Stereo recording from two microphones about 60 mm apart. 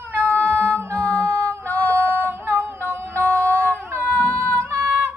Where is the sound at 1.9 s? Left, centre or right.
Right.